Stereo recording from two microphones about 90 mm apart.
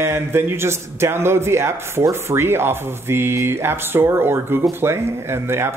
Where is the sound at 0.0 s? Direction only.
30° right (ahead or behind).